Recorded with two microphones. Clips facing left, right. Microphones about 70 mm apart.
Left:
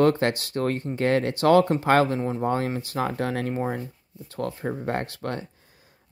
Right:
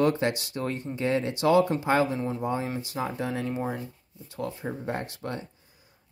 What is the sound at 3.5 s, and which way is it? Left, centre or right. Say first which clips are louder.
Speech: left 3 dB; left.